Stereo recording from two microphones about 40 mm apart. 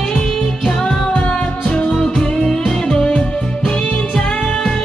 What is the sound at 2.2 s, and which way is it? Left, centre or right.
Music, left.